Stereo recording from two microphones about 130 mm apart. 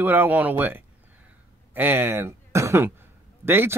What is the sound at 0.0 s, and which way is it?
Speech, 15° right (ahead or behind).